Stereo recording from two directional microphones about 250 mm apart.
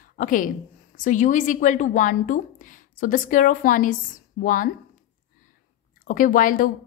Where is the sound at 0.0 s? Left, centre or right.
Left.